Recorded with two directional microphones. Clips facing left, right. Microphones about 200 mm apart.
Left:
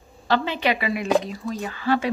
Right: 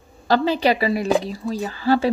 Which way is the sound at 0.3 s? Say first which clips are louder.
Right 4 dB; 35° right (ahead or behind).